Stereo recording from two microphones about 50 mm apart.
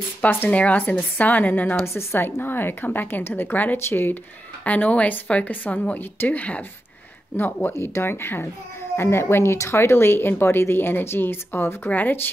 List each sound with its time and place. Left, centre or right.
0.2 s speech: left
0.5 s a woman's voice: left
2.0 s speech: left
4.6 s a woman's voice: left
7.3 s speech: left
7.7 s speech: left
11.9 s a woman's voice: left